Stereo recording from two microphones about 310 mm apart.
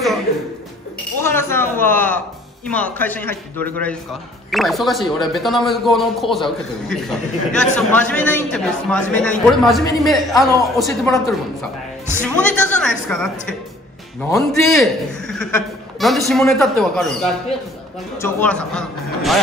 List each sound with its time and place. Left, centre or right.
1.2 s a man's voice: centre